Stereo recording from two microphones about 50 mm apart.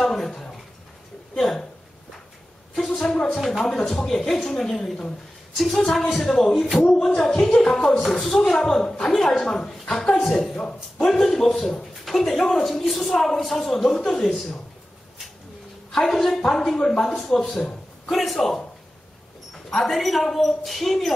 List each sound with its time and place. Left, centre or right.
0.0 s a sound: centre
1.3 s speech: centre
2.7 s a woman's voice: centre
8.5 s a woman's voice: centre
9.1 s a woman's voice: centre
11.1 s a woman's voice: centre
13.9 s a woman's voice: centre
15.9 s a woman's voice: centre
17.2 s a woman's voice: centre
19.7 s a woman's voice: centre